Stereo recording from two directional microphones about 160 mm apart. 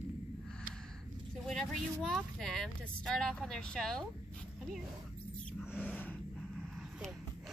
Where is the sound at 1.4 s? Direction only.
Centre (ahead or behind).